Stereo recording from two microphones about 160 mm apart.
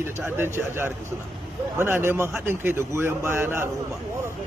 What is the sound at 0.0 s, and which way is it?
A man's voice, 15° right (ahead or behind).